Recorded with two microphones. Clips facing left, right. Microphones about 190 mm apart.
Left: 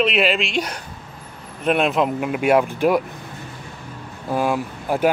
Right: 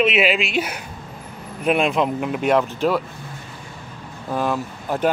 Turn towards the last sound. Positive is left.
turn(degrees=10)  # may be behind; listen again after turning